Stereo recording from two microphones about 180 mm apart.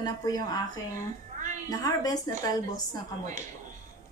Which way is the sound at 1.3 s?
45° right (ahead or behind).